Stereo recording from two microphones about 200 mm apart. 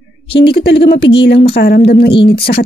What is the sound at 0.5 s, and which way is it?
A woman's voice, 55° left (ahead or behind).